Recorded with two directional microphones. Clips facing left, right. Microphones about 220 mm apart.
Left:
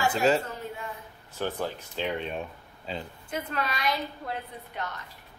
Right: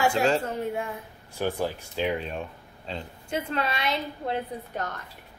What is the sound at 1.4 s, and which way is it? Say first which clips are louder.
Speech: right 3 dB; 10° right (ahead or behind).